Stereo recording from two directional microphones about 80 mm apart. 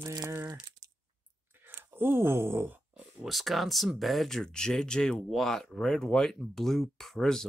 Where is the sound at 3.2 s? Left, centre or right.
Centre.